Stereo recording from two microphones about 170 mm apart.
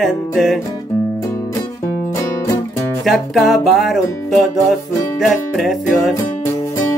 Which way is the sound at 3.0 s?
Centre (ahead or behind).